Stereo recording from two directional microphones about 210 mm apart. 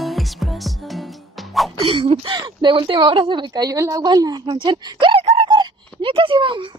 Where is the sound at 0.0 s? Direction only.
Centre (ahead or behind).